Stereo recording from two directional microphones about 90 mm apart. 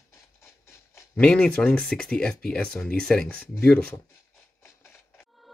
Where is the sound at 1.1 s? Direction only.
15° left (ahead or behind).